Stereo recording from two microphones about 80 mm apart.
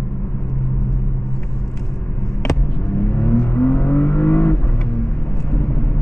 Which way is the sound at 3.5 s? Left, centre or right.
Left.